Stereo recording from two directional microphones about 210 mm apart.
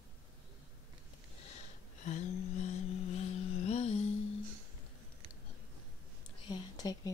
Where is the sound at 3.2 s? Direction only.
30° left (ahead or behind).